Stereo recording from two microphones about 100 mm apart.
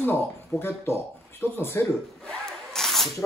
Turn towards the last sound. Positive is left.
turn(degrees=0)  # may be behind; listen again after turning